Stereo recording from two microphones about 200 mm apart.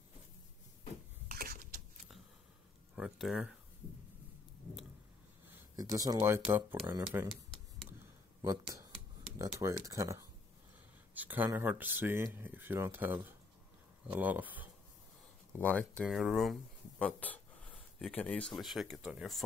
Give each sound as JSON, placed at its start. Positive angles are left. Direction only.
{"t": 1.3, "sound": "a sound", "side_deg": -45}
{"t": 3.0, "sound": "speech", "side_deg": -5}
{"t": 5.5, "sound": "speech", "side_deg": -15}
{"t": 8.4, "sound": "speech", "side_deg": -15}
{"t": 15.5, "sound": "speech", "side_deg": 5}